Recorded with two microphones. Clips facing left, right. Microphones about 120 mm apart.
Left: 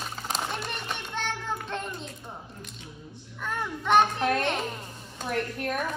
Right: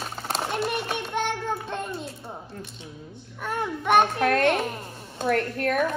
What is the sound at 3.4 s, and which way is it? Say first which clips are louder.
Child singing: right 3 dB; 10° right (ahead or behind).